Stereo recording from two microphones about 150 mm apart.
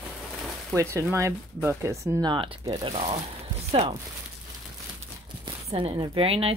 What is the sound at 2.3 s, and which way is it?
Speech, 35° right (ahead or behind).